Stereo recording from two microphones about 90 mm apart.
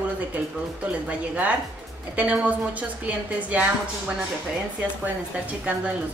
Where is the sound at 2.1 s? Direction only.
15° right (ahead or behind).